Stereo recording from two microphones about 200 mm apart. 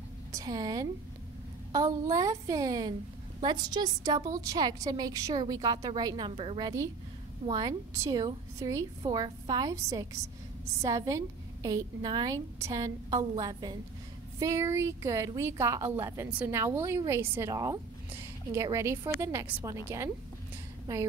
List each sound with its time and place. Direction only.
0.3 s a woman's voice: 20° right (ahead or behind)
20.8 s a woman's voice: 15° right (ahead or behind)